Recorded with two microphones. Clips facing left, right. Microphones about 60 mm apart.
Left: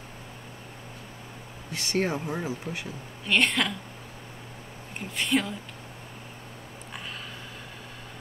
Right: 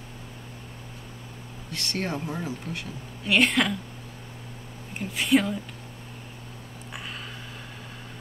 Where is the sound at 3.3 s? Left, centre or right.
Centre.